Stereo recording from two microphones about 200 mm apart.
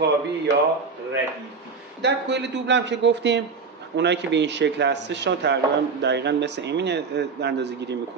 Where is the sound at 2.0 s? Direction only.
55° right (ahead or behind).